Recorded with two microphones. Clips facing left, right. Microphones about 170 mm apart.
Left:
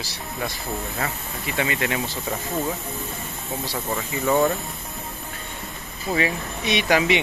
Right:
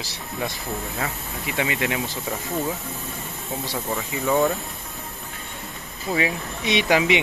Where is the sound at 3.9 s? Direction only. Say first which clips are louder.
Left 1 dB; centre (ahead or behind).